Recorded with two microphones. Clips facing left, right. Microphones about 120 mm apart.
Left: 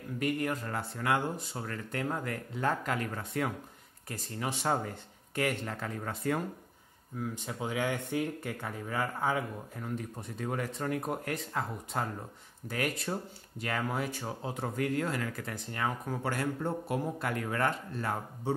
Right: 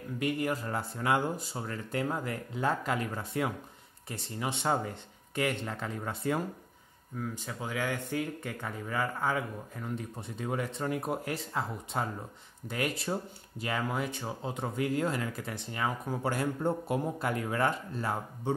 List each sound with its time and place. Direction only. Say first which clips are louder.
0.2 s speech: right 1 dB; 5° right (ahead or behind)
0.7 s a man's voice: right 1 dB; 15° right (ahead or behind)
7.2 s speech: left 1 dB; 15° left (ahead or behind)
10.1 s speech: right 1 dB; centre (ahead or behind)
13.1 s speech: right 2 dB; 10° right (ahead or behind)
13.7 s speech: even; centre (ahead or behind)
14.8 s a man's voice: right 2 dB; 15° right (ahead or behind)